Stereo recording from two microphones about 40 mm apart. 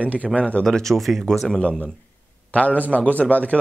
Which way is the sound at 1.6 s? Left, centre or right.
Left.